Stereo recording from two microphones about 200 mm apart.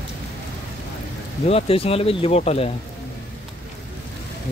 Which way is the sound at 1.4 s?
30° left (ahead or behind).